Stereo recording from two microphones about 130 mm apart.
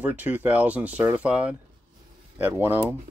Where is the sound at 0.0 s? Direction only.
10° right (ahead or behind).